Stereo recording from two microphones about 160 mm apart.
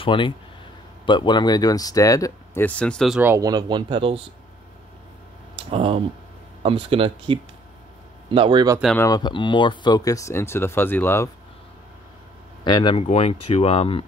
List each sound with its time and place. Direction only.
0.0 s speech: 30° left (ahead or behind); by 3.2 s 5° left (ahead or behind)
3.2 s speech: 15° right (ahead or behind)
5.7 s speech: 35° right (ahead or behind)
8.9 s speech: 20° left (ahead or behind)
12.6 s speech: 30° left (ahead or behind)